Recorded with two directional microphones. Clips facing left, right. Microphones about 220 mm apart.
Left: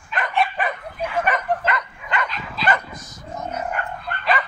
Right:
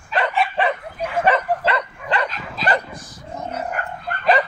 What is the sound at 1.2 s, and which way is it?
Dog, 30° right (ahead or behind).